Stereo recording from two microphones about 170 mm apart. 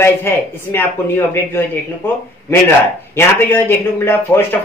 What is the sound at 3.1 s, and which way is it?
Speech, 15° left (ahead or behind).